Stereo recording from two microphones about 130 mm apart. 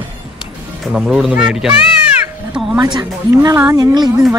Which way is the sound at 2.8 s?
30° right (ahead or behind).